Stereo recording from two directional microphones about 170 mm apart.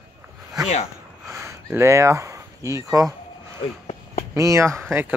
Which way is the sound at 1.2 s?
15° right (ahead or behind).